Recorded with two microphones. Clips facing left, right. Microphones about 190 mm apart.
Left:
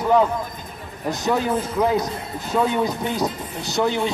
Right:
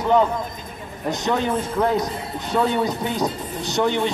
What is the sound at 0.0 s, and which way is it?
A man's voice, 5° left (ahead or behind).